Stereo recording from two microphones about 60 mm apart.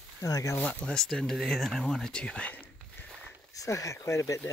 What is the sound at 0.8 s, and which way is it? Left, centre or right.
Speech, centre.